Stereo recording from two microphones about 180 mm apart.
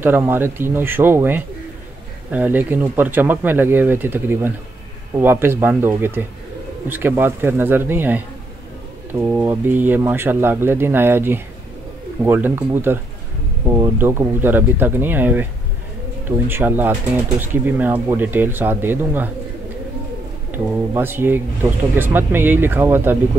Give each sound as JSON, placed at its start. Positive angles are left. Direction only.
{"t": 0.0, "sound": "speech", "side_deg": -10}
{"t": 9.2, "sound": "speech", "side_deg": -10}
{"t": 20.5, "sound": "speech", "side_deg": -10}